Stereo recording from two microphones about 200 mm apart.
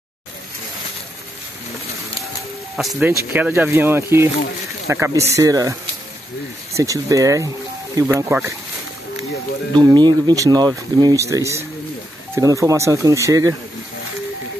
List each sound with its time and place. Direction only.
2.7 s speech: centre (ahead or behind)
9.9 s speech: 20° right (ahead or behind)